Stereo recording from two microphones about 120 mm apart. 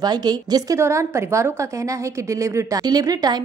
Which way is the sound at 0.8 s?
25° right (ahead or behind).